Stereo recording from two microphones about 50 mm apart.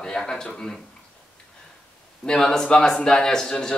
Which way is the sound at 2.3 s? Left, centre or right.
Centre.